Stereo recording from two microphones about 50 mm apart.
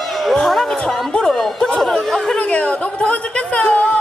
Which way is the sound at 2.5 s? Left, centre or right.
Left.